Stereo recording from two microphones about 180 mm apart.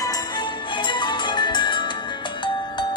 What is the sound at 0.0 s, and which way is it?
Music, 20° left (ahead or behind).